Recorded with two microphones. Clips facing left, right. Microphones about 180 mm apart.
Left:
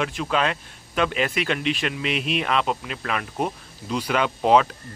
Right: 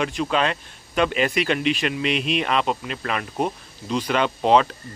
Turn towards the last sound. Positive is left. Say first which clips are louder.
# right 1 dB
turn(degrees=5)  # may be behind; listen again after turning